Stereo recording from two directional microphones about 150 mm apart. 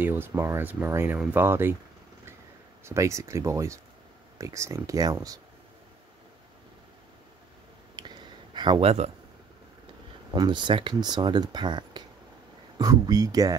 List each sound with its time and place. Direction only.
0.0 s speech: 15° right (ahead or behind)
2.8 s speech: 20° right (ahead or behind)
7.9 s a sound: 30° right (ahead or behind)
10.3 s speech: 30° right (ahead or behind)